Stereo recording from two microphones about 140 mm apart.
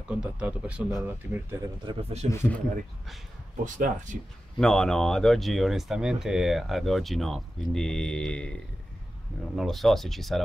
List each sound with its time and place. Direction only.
0.1 s speech: 5° right (ahead or behind)
1.9 s speech: 45° right (ahead or behind)
2.3 s speech: 15° left (ahead or behind)
3.6 s speech: 65° right (ahead or behind)
4.6 s speech: 5° left (ahead or behind)
9.6 s speech: centre (ahead or behind)